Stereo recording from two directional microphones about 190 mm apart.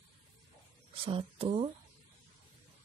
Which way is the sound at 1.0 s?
30° right (ahead or behind).